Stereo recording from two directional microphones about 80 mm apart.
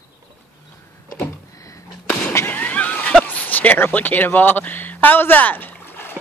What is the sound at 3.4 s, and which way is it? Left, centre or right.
Speech, left.